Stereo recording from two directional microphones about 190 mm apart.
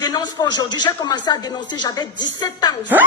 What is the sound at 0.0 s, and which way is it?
Speech, 20° left (ahead or behind).